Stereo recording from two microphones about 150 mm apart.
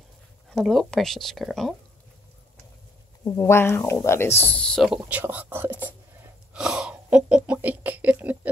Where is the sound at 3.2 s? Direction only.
20° left (ahead or behind); by 5.0 s centre (ahead or behind).